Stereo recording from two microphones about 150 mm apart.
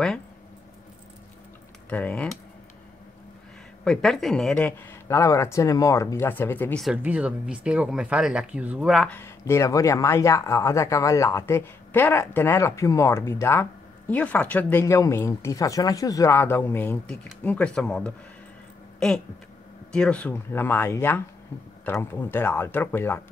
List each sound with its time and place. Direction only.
1.9 s speech: 10° left (ahead or behind)
3.8 s speech: 5° left (ahead or behind)
6.8 s speech: 5° right (ahead or behind); by 9.3 s 10° left (ahead or behind)
9.4 s speech: 20° left (ahead or behind)
18.9 s a sound: 5° left (ahead or behind)
19.9 s speech: 5° left (ahead or behind)